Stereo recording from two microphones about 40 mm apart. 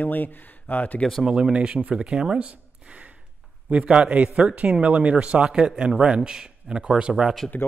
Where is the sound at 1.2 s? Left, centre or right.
Centre.